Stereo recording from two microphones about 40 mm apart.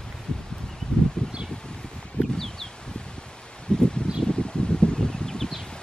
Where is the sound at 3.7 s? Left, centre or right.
Left.